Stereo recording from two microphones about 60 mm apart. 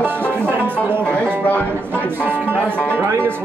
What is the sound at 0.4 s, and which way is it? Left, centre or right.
Music, right.